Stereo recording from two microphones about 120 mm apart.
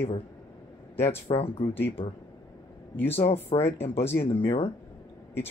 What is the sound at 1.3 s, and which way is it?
Speech, 55° left (ahead or behind).